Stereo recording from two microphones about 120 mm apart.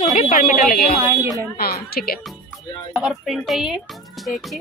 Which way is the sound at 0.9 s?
20° right (ahead or behind).